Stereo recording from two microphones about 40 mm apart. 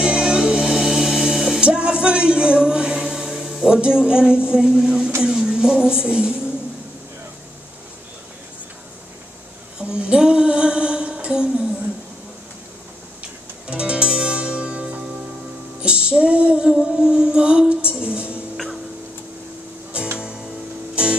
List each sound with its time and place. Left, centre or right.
0.0 s music: right
0.7 s music: centre
1.6 s a woman's voice: right
9.8 s a sound: right
10.0 s music: right
13.2 s music: right
20.9 s music: right